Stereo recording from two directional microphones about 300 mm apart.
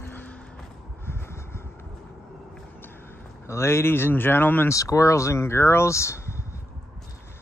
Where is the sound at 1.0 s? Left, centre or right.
Centre.